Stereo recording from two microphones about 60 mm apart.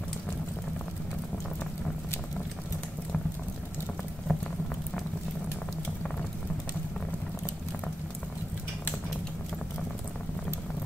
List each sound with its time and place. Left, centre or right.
4.3 s patter: left